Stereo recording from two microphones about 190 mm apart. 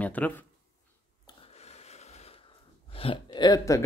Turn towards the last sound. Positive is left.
turn(degrees=20)  # may be behind; listen again after turning